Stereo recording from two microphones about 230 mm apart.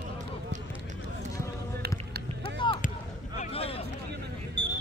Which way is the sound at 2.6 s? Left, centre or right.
Left.